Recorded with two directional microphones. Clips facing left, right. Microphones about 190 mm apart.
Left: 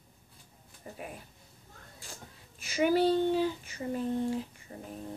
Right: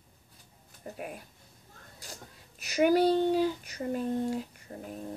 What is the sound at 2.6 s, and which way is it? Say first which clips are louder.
Speech: right 2 dB; 40° right (ahead or behind).